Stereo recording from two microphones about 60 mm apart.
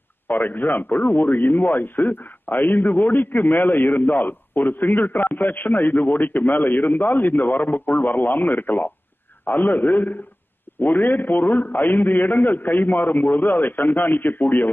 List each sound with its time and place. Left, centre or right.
0.3 s speech: left